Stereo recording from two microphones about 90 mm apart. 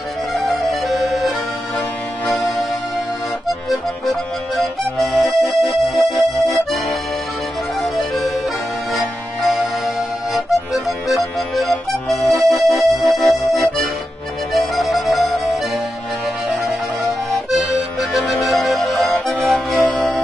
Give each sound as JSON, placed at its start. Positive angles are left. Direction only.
{"t": 0.3, "sound": "music", "side_deg": 0}
{"t": 3.6, "sound": "accordion", "side_deg": 0}
{"t": 4.9, "sound": "music", "side_deg": 0}
{"t": 6.1, "sound": "accordion", "side_deg": -35}
{"t": 9.5, "sound": "music", "side_deg": -5}
{"t": 14.8, "sound": "music", "side_deg": 0}
{"t": 18.3, "sound": "music", "side_deg": 0}
{"t": 19.2, "sound": "music", "side_deg": 15}